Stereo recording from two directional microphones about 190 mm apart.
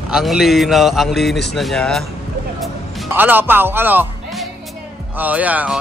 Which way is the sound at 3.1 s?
10° right (ahead or behind).